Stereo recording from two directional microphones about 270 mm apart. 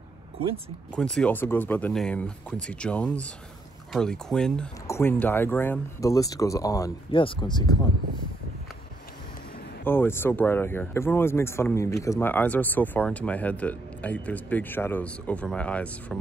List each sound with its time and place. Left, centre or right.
0.9 s speech: centre
9.8 s speech: centre